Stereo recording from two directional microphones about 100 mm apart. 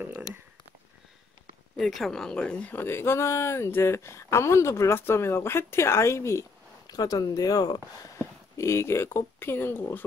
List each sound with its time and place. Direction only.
1.8 s speech: 5° left (ahead or behind); by 6.4 s 30° left (ahead or behind)
6.9 s speech: 40° left (ahead or behind)
8.2 s speech: 30° left (ahead or behind)